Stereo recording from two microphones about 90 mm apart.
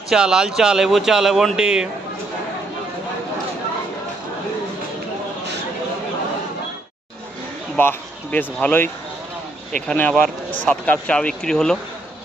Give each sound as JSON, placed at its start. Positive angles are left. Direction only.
{"t": 0.1, "sound": "speech", "side_deg": -5}
{"t": 7.7, "sound": "speech", "side_deg": 20}
{"t": 9.7, "sound": "speech", "side_deg": 10}